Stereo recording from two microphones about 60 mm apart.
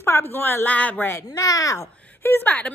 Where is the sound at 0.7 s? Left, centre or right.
Left.